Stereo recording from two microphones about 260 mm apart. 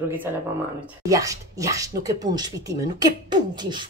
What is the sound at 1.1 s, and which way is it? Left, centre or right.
Speech, centre.